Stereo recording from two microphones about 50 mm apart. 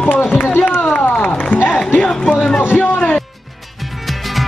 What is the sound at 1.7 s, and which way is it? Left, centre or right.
Music, left.